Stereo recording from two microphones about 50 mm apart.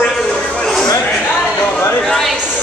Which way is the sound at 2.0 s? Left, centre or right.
Centre.